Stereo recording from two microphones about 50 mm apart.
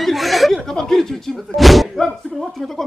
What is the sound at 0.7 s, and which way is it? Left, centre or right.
Speech, centre.